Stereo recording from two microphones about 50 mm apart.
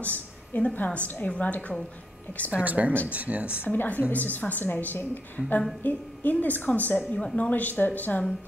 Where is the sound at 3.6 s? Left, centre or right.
Left.